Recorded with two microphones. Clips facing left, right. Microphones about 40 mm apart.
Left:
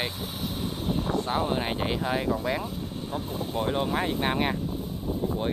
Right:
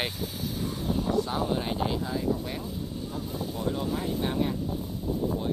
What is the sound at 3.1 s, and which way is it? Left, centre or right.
Speech, left.